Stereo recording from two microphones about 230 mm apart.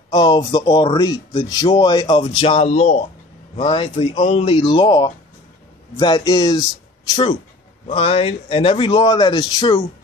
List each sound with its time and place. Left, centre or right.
0.1 s a man's voice: centre
7.8 s speech: left